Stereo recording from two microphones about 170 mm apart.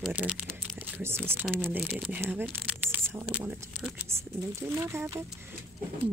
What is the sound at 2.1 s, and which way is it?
Speech, 10° right (ahead or behind).